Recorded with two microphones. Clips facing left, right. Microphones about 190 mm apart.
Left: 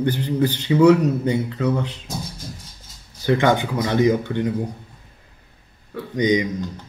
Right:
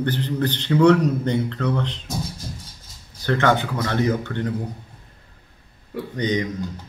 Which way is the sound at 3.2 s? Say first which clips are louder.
Left 2 dB; 15° left (ahead or behind).